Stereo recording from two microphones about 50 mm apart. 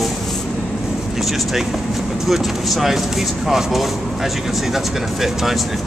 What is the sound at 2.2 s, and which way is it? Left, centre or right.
Speech, centre.